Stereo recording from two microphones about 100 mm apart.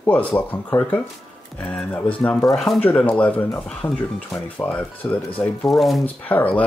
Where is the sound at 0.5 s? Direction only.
20° left (ahead or behind).